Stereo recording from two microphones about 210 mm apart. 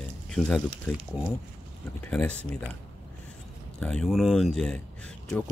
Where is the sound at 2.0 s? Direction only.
5° left (ahead or behind).